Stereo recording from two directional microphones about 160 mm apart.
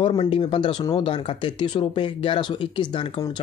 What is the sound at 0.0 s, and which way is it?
Speech, 35° left (ahead or behind).